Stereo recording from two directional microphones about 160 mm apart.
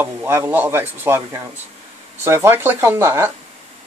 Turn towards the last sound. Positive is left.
turn(degrees=-15)  # may be behind; listen again after turning